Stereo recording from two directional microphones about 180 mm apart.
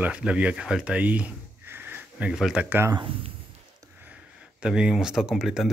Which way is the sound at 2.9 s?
25° right (ahead or behind).